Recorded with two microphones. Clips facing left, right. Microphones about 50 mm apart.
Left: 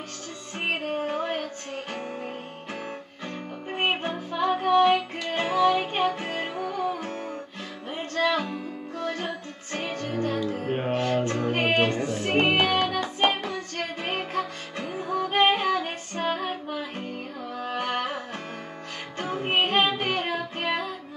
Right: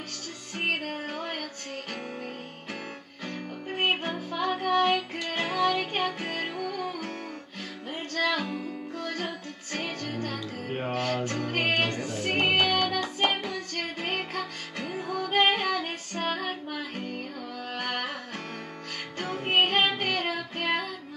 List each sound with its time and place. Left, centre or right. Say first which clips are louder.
0.7 s music: left 4 dB; centre
3.6 s music: left 1 dB; centre
4.4 s music: left 5 dB; centre
5.8 s music: left 4 dB; centre
6.6 s music: left 4 dB; left
8.1 s music: left 3 dB; left
8.5 s music: even; centre
8.9 s music: left 4 dB; left
15.6 s female singing: left 3 dB; left
16.2 s female singing: left 3 dB; centre
17.6 s carnatic music: left 6 dB; centre
17.8 s music: left 3 dB; left
19.4 s music: left 1 dB; centre